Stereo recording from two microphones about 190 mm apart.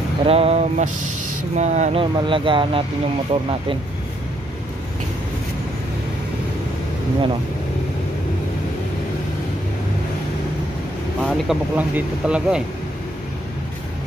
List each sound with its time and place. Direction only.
0.2 s speech: 30° right (ahead or behind)
11.2 s speech: 5° right (ahead or behind)